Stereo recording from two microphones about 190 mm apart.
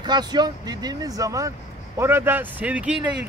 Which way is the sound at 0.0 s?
20° right (ahead or behind).